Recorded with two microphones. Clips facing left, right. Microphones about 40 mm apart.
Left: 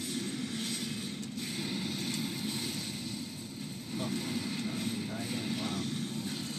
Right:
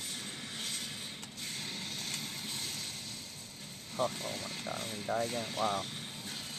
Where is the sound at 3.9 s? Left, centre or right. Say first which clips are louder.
Even; centre.